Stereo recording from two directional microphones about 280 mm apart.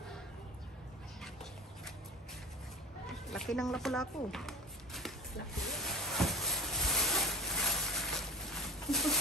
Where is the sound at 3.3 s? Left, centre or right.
Centre.